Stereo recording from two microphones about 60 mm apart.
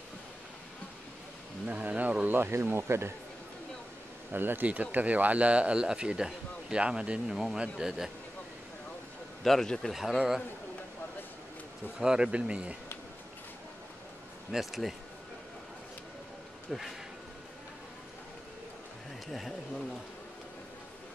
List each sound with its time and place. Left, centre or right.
1.7 s speech: right
2.3 s speech: right
4.3 s speech: right; by 8.1 s centre
9.4 s speech: centre
9.9 s speech: centre
12.0 s speech: centre
14.5 s speech: centre
19.2 s speech: centre